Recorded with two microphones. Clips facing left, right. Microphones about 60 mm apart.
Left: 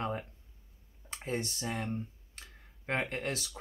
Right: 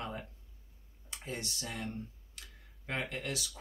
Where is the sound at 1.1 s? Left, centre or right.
Left.